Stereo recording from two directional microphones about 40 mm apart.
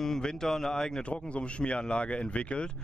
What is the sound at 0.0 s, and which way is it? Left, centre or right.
Speech, centre.